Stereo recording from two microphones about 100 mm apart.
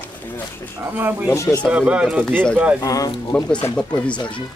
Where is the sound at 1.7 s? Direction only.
10° right (ahead or behind).